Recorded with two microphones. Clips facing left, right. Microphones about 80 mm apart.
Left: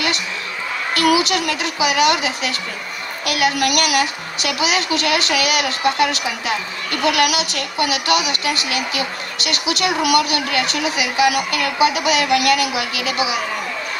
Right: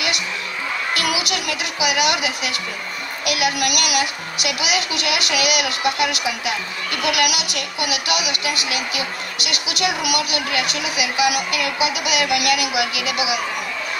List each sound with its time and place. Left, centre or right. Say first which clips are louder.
0.9 s a woman's voice: left 10 dB; left